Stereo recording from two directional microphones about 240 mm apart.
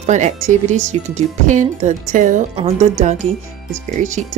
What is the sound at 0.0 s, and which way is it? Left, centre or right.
Speech, right.